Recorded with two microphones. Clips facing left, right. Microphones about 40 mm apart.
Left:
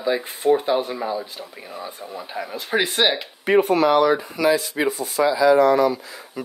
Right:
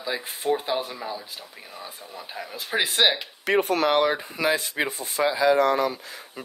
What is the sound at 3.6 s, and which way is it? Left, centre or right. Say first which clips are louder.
Speech: left 5 dB; left.